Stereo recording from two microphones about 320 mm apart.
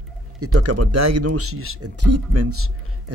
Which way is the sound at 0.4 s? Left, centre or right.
Right.